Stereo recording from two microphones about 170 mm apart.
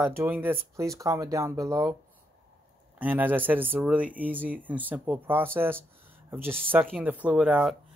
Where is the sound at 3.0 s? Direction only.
10° right (ahead or behind).